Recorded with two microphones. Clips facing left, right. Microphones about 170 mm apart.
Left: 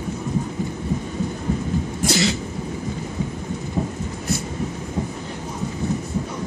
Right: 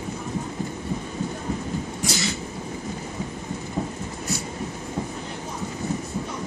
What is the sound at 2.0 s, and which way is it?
Cough, 75° left (ahead or behind).